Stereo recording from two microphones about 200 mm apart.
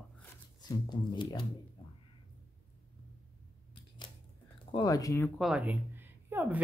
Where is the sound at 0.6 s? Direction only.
20° left (ahead or behind).